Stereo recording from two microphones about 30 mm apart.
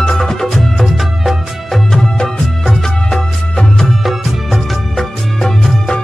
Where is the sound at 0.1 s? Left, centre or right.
Centre.